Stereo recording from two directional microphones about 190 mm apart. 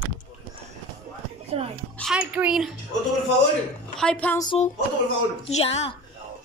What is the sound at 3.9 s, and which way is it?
Speech, 5° left (ahead or behind).